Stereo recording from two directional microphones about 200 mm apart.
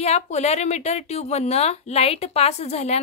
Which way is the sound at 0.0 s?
35° left (ahead or behind).